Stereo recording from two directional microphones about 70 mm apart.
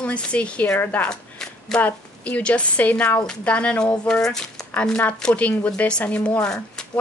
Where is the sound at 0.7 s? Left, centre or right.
Left.